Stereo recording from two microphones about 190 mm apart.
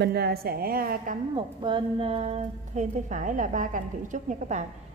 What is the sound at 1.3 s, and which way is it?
A woman's voice, 25° right (ahead or behind).